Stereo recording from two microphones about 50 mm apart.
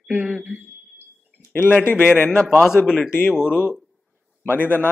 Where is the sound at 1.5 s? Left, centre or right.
Left.